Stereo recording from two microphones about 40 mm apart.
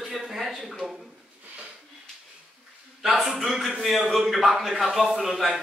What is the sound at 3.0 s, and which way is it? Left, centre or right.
A man's voice, centre.